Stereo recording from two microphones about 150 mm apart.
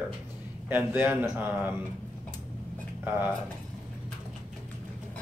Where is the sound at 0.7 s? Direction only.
15° right (ahead or behind).